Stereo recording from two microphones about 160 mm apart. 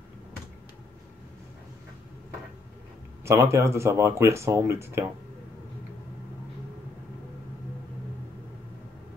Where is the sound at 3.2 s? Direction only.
20° right (ahead or behind).